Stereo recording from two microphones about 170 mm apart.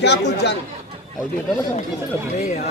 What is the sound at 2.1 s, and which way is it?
Speech, 20° right (ahead or behind).